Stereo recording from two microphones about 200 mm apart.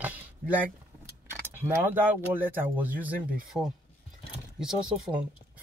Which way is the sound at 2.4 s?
10° right (ahead or behind).